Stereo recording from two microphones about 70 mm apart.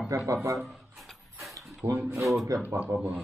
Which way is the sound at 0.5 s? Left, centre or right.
Centre.